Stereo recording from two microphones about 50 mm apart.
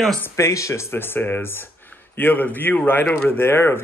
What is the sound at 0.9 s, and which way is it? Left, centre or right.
Speech, left.